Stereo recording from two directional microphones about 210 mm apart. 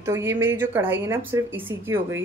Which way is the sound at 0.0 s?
10° right (ahead or behind).